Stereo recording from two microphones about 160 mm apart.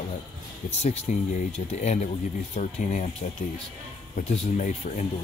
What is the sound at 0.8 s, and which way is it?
Speech, 45° left (ahead or behind).